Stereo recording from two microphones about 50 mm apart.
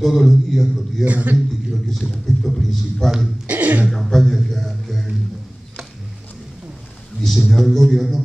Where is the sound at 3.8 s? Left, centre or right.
Centre.